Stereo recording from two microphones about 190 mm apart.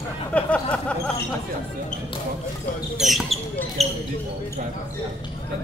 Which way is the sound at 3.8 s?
35° right (ahead or behind).